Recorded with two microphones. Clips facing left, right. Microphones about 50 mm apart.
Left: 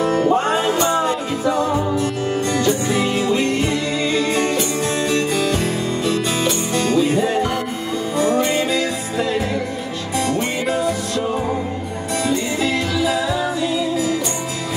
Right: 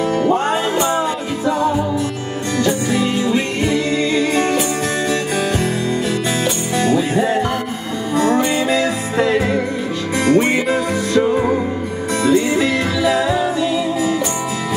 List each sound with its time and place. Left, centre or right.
8.7 s music: right
13.6 s music: right